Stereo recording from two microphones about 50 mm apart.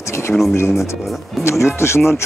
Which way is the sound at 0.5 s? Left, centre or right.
Left.